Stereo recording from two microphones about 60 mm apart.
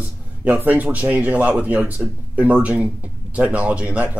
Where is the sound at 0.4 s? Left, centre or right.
Right.